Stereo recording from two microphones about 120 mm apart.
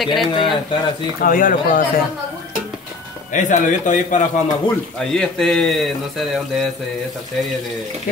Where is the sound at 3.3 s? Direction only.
90° left.